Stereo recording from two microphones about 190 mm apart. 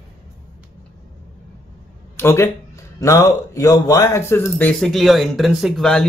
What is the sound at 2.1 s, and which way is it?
Speech, 15° left (ahead or behind).